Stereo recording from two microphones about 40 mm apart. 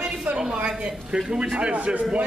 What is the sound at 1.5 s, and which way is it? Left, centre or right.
Speech, right.